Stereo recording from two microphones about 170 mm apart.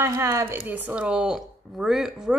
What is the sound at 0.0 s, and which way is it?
A woman's voice, 15° right (ahead or behind).